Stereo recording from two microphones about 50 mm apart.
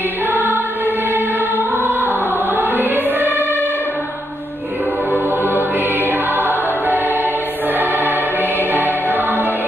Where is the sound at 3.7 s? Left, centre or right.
Left.